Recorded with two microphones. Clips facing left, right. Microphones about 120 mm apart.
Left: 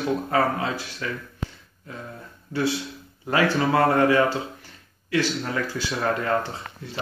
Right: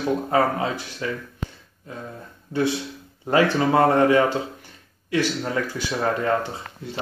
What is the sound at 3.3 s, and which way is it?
Speech, 25° right (ahead or behind).